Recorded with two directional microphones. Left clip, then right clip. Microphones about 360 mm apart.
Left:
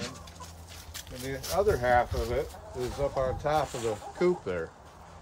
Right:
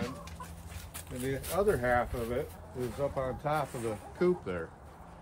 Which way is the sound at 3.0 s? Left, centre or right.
Left.